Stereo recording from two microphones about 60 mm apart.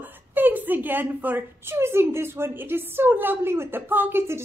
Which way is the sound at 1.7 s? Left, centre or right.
Right.